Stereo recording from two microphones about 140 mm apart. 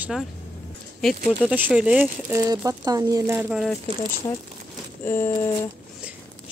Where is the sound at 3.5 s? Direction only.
Centre (ahead or behind).